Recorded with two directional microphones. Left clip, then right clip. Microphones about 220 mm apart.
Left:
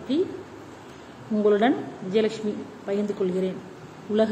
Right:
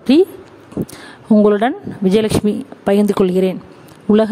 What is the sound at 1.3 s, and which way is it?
Speech, 50° right (ahead or behind).